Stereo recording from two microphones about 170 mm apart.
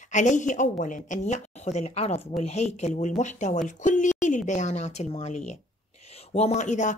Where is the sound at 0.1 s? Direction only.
45° left (ahead or behind).